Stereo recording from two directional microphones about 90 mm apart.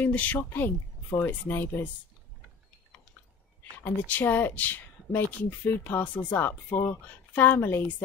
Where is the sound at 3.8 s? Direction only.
20° left (ahead or behind).